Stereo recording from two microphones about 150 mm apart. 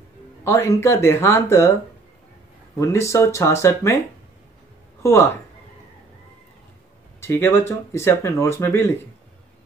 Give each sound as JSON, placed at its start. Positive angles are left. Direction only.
{"t": 0.4, "sound": "speech", "side_deg": 20}
{"t": 2.8, "sound": "speech", "side_deg": 20}
{"t": 5.0, "sound": "speech", "side_deg": 20}
{"t": 7.2, "sound": "speech", "side_deg": 15}